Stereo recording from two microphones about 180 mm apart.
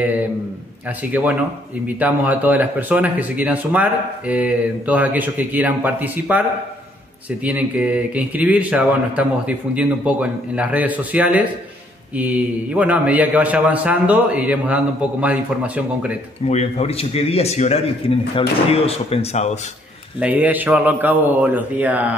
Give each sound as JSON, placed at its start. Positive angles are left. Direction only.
{"t": 1.0, "sound": "speech", "side_deg": -10}
{"t": 16.4, "sound": "a man's voice", "side_deg": 35}
{"t": 20.2, "sound": "speech", "side_deg": -10}